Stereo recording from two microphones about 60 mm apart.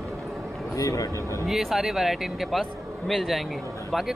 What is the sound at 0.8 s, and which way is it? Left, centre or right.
Speech, left.